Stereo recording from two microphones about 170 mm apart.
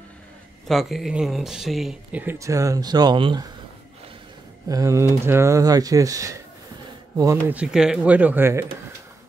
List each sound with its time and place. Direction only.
0.7 s speech: centre (ahead or behind); by 3.4 s 25° right (ahead or behind)
4.6 s speech: 20° right (ahead or behind)
7.5 s speech: 5° right (ahead or behind)